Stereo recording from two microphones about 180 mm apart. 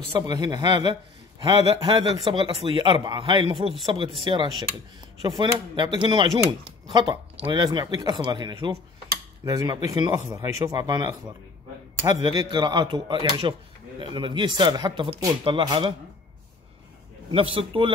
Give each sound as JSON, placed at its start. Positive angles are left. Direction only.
{"t": 0.1, "sound": "speech", "side_deg": -20}
{"t": 17.3, "sound": "speech", "side_deg": -30}